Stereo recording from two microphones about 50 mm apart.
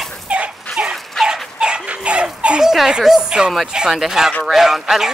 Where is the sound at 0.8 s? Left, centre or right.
Right.